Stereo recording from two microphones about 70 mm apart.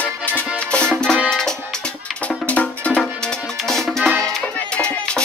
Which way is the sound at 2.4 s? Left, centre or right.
Centre.